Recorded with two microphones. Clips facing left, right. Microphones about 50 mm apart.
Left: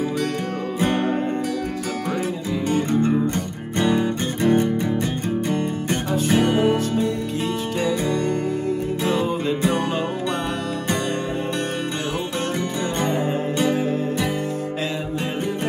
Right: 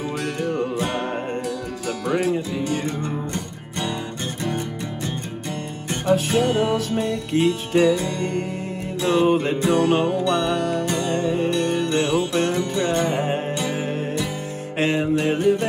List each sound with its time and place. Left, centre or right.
2.9 s music: left
3.8 s music: centre
7.0 s music: right